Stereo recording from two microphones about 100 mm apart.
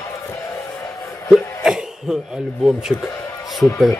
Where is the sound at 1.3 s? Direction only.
5° right (ahead or behind).